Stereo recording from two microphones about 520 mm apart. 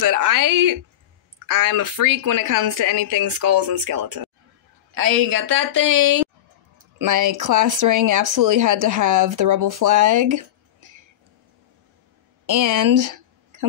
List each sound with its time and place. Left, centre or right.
0.0 s speech: right
12.4 s speech: right